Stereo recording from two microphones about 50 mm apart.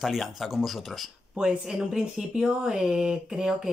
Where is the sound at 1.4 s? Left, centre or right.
Centre.